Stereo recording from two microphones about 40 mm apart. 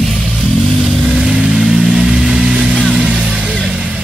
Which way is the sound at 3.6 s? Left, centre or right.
Centre.